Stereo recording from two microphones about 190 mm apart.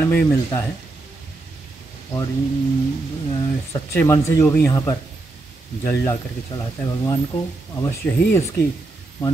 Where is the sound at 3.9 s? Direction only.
15° left (ahead or behind).